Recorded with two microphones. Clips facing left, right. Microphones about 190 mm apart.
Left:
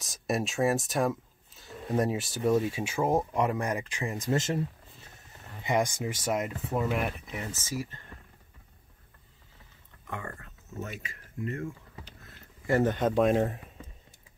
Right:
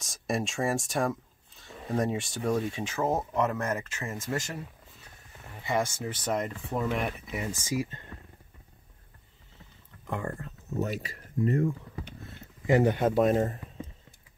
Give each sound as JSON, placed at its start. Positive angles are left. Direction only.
{"t": 0.0, "sound": "speech", "side_deg": 0}
{"t": 5.6, "sound": "speech", "side_deg": 15}
{"t": 10.0, "sound": "speech", "side_deg": -30}
{"t": 12.3, "sound": "speech", "side_deg": -15}